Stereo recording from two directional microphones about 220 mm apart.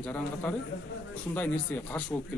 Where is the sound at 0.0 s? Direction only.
5° left (ahead or behind).